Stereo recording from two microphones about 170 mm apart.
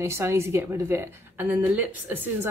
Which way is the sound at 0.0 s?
15° right (ahead or behind).